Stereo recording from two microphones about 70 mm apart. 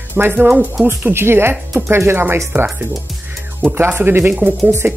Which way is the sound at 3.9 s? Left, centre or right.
Right.